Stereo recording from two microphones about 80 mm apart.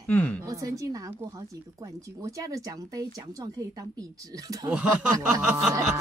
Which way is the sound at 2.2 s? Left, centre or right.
Right.